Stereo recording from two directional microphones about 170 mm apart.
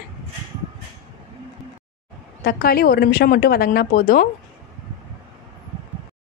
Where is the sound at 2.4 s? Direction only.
60° left (ahead or behind).